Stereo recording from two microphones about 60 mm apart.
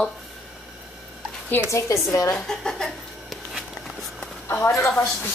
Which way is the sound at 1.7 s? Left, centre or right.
Left.